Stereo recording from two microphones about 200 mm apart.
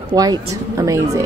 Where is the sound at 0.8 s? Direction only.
15° right (ahead or behind).